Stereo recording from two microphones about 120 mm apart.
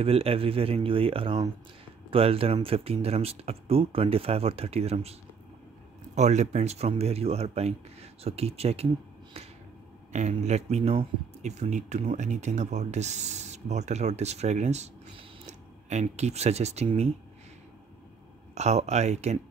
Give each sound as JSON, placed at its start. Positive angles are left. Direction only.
{"t": 0.0, "sound": "speech", "side_deg": -55}
{"t": 6.1, "sound": "speech", "side_deg": -70}
{"t": 10.1, "sound": "speech", "side_deg": -75}
{"t": 18.5, "sound": "speech", "side_deg": -70}